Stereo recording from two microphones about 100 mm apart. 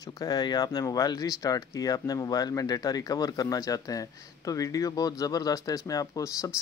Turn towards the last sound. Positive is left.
turn(degrees=35)  # may be behind; listen again after turning